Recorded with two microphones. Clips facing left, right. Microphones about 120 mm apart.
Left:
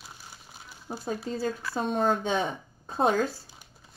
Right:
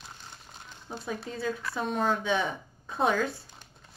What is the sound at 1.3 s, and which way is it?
A woman's voice, 35° left (ahead or behind).